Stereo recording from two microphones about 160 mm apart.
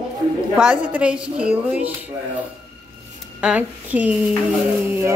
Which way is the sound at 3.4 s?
10° right (ahead or behind).